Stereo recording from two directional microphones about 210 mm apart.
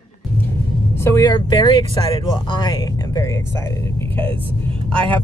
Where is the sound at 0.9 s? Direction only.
10° left (ahead or behind).